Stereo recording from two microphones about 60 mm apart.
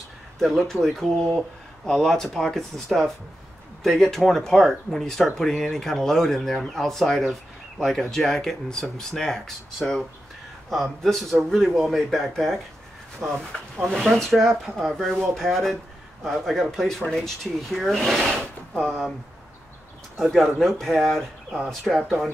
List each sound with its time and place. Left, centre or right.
0.4 s speech: centre
10.7 s a man's voice: centre
13.2 s speech: right
13.7 s a man's voice: centre
20.2 s a man's voice: centre